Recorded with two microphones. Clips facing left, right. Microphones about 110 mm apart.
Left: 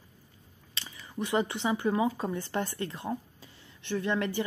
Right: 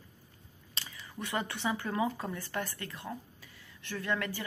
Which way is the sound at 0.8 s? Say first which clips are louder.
Left 7 dB; 20° left (ahead or behind).